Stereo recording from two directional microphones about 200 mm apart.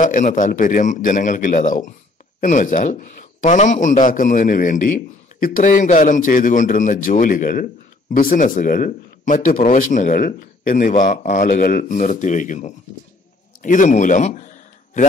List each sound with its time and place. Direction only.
0.0 s a man's voice: 40° left (ahead or behind)